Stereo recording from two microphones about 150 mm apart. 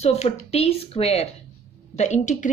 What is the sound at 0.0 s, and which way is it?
A woman's voice, 45° left (ahead or behind).